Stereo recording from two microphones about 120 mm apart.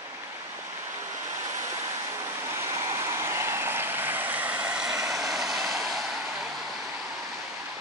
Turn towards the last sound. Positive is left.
turn(degrees=0)  # may be behind; listen again after turning